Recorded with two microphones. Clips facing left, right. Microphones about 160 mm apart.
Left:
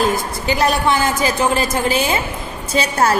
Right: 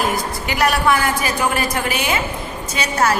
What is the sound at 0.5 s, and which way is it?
A woman's voice, 25° left (ahead or behind).